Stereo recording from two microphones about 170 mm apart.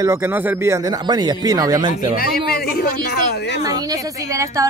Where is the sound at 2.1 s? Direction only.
65° left (ahead or behind); by 3.6 s 80° left.